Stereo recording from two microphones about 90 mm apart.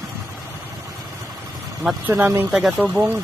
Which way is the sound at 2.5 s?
5° right (ahead or behind).